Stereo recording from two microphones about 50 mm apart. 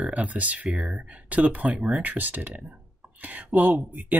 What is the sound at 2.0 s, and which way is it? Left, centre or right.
Speech, right.